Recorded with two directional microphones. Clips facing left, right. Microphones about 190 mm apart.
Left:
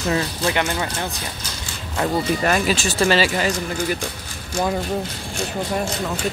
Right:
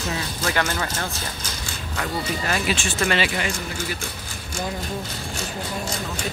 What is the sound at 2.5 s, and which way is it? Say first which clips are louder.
Speech: left 4 dB; 40° left (ahead or behind).